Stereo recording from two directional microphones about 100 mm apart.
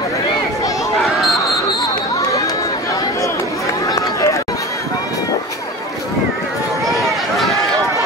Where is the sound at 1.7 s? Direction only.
45° left (ahead or behind).